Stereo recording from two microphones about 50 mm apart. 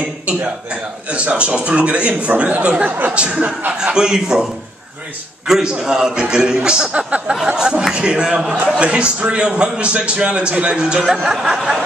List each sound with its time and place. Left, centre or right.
1.1 s a man's voice: right
3.9 s a man's voice: centre
5.5 s a man's voice: centre